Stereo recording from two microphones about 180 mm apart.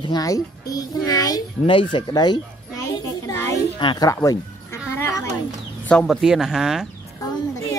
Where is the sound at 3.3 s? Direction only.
15° left (ahead or behind).